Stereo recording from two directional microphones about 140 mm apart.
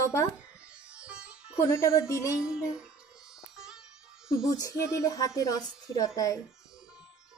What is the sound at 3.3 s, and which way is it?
Music, 5° right (ahead or behind).